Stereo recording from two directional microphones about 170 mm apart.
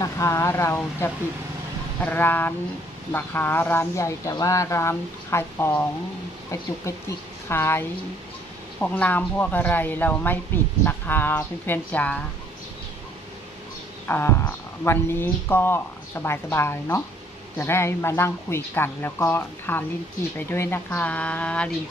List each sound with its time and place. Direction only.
0.0 s speech: 15° left (ahead or behind)
7.1 s a woman's voice: 15° left (ahead or behind)
14.0 s speech: 15° left (ahead or behind)